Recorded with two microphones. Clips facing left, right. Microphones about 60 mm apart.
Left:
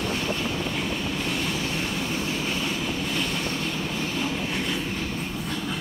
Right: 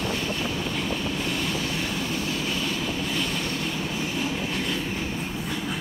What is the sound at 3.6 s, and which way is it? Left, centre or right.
Train, centre.